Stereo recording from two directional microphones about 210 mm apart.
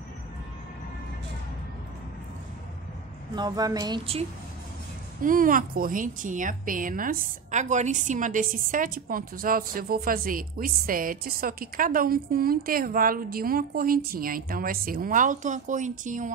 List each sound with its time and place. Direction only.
3.3 s speech: 20° right (ahead or behind)
5.2 s a woman's voice: 40° right (ahead or behind)